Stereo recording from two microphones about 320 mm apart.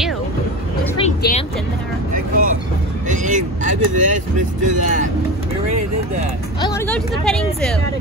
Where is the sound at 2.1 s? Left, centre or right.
Right.